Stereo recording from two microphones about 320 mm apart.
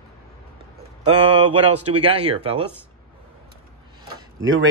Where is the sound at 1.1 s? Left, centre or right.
Centre.